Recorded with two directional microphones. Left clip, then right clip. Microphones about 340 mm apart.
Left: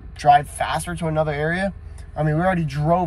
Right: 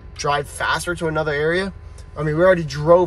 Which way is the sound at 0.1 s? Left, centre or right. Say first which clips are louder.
Left 6 dB; centre.